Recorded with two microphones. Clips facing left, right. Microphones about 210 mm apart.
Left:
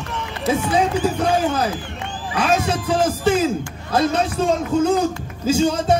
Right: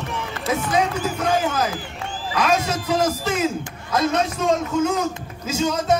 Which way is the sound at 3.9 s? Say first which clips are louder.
Left 2 dB; 30° left (ahead or behind).